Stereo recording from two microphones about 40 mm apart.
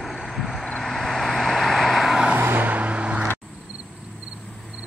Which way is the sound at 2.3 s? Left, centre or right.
Right.